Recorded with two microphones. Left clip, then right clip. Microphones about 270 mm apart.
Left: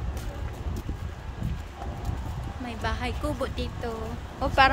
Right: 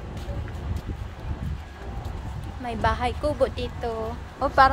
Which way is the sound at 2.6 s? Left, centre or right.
Centre.